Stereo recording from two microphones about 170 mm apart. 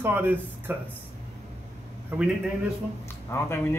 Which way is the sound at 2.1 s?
10° right (ahead or behind).